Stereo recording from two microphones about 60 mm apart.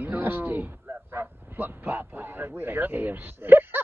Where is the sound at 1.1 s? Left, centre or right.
Right.